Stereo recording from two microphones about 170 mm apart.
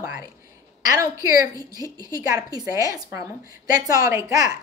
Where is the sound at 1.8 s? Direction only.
20° right (ahead or behind).